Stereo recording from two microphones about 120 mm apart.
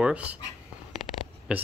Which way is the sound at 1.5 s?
10° right (ahead or behind).